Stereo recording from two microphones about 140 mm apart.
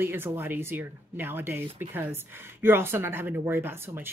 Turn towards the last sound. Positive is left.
turn(degrees=-15)  # may be behind; listen again after turning